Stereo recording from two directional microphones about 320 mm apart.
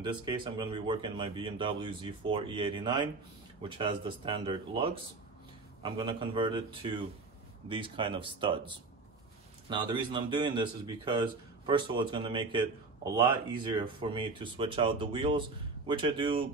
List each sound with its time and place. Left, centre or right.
0.0 s speech: centre